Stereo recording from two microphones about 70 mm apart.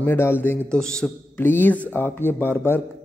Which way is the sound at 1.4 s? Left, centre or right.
Left.